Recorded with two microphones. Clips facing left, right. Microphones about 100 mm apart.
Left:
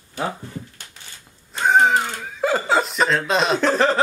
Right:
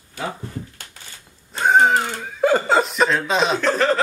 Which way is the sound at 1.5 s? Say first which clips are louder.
Right 1 dB; centre (ahead or behind).